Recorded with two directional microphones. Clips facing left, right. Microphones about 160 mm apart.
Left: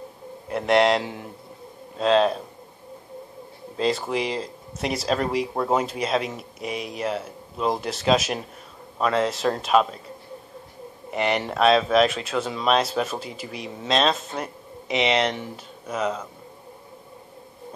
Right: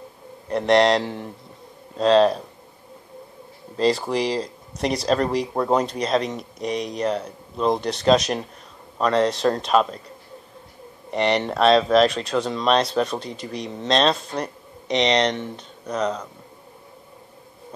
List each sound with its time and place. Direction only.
0.5 s speech: 5° left (ahead or behind)
3.7 s speech: centre (ahead or behind)
11.1 s speech: 5° left (ahead or behind)